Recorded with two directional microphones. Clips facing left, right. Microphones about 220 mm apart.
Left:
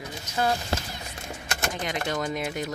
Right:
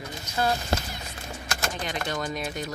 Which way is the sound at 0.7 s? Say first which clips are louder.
Right 2 dB; 45° right (ahead or behind).